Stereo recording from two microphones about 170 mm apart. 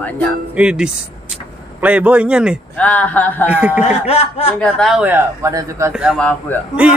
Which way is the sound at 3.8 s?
35° left (ahead or behind).